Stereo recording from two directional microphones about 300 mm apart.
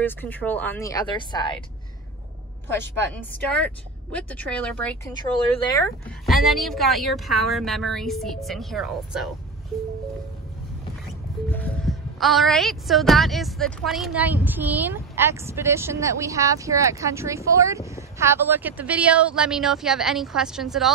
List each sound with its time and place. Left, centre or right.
0.0 s speech: centre
3.3 s a woman's voice: centre
11.5 s a woman's voice: centre